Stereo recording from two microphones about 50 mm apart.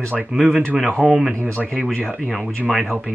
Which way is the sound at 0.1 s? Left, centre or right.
Centre.